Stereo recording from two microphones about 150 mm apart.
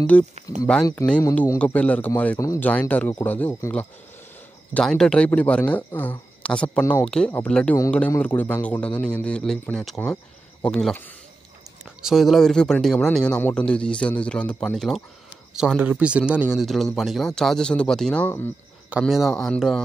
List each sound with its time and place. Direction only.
0.1 s a man's voice: 10° left (ahead or behind)
1.0 s speech: 20° left (ahead or behind)
1.3 s a man's voice: 10° left (ahead or behind)
2.7 s a man's voice: 10° left (ahead or behind)
6.8 s speech: 20° left (ahead or behind)
7.1 s a man's voice: 5° left (ahead or behind)
12.0 s speech: centre (ahead or behind)
18.9 s speech: 5° right (ahead or behind)